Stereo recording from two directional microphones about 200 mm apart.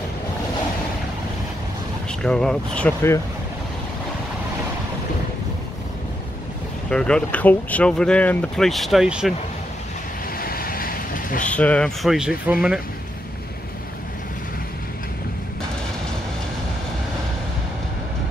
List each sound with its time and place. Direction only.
2.0 s speech: 5° left (ahead or behind)
6.9 s speech: 5° left (ahead or behind)
10.4 s vehicle: 45° left (ahead or behind)
11.4 s speech: 5° left (ahead or behind)